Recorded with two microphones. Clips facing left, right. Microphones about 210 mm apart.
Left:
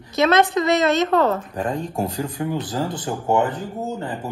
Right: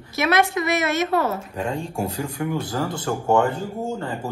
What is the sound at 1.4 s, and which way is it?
Speech, 10° right (ahead or behind).